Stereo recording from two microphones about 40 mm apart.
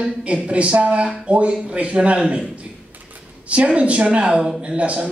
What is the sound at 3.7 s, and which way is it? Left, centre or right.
A man's voice, right.